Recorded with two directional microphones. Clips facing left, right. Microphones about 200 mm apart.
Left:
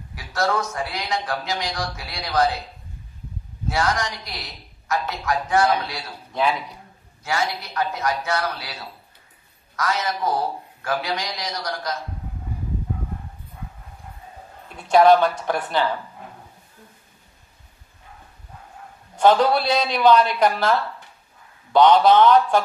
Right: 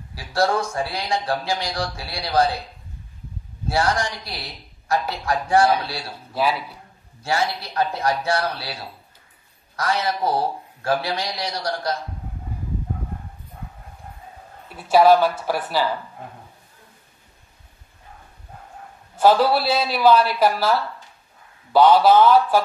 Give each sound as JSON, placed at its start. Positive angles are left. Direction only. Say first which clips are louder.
{"t": 0.1, "sound": "a man's voice", "louder": "right 2 dB", "side_deg": -30}
{"t": 3.6, "sound": "a man's voice", "louder": "right 2 dB", "side_deg": -30}
{"t": 6.4, "sound": "a man's voice", "louder": "even", "side_deg": -5}
{"t": 7.2, "sound": "a man's voice", "louder": "right 2 dB", "side_deg": -30}
{"t": 14.8, "sound": "speech", "louder": "even", "side_deg": -5}
{"t": 19.1, "sound": "speech", "louder": "even", "side_deg": -5}